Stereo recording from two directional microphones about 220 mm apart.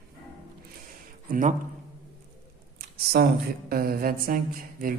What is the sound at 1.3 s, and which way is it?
Speech, 35° right (ahead or behind).